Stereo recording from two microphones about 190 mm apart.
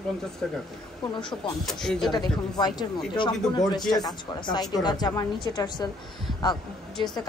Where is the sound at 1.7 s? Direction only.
Centre (ahead or behind).